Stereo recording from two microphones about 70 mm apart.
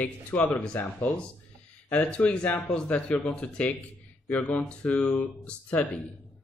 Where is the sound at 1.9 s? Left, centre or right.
Left.